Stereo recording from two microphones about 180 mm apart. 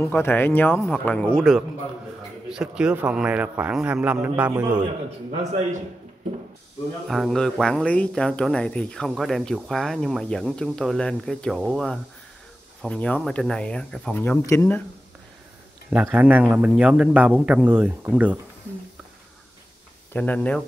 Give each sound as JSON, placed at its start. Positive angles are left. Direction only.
{"t": 0.0, "sound": "speech", "side_deg": 10}
{"t": 5.4, "sound": "a man's voice", "side_deg": -40}
{"t": 7.1, "sound": "speech", "side_deg": 0}
{"t": 15.9, "sound": "speech", "side_deg": -10}
{"t": 20.1, "sound": "speech", "side_deg": 10}